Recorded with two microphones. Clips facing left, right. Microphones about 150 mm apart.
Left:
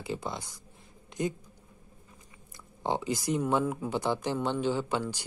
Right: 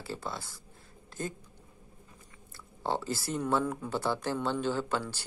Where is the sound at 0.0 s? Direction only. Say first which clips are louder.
Left 3 dB; 15° left (ahead or behind).